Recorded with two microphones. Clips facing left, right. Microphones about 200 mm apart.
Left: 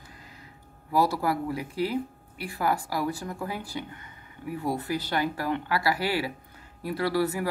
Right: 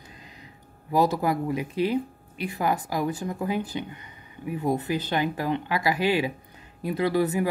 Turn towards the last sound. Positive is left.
turn(degrees=-20)  # may be behind; listen again after turning